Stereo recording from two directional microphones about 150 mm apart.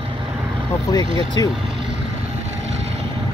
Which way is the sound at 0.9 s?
25° left (ahead or behind).